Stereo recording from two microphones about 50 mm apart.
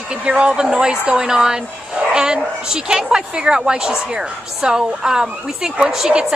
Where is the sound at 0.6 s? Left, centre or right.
Centre.